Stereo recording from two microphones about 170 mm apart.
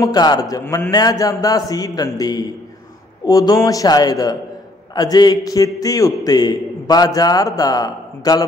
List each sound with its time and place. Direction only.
0.0 s a man's voice: 25° left (ahead or behind)